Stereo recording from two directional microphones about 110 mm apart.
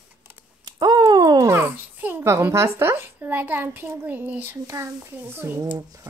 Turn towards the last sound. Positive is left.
turn(degrees=-25)  # may be behind; listen again after turning